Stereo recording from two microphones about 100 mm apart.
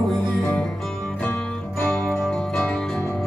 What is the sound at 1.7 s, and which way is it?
Music, 20° left (ahead or behind).